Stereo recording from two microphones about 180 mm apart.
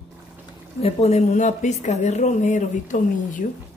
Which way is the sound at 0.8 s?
35° left (ahead or behind).